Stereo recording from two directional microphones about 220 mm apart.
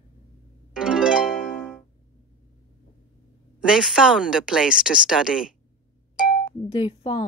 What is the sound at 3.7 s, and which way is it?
Speech, 5° right (ahead or behind).